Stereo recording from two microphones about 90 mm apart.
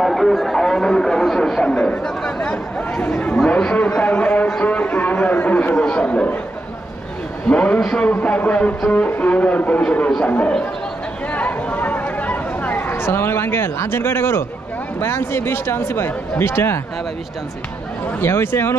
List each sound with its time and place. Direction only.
0.0 s a sound: centre (ahead or behind)
7.4 s a man's voice: 15° left (ahead or behind)
11.3 s chatter: 15° left (ahead or behind)
15.0 s speech: 30° left (ahead or behind)
18.2 s speech: 25° left (ahead or behind)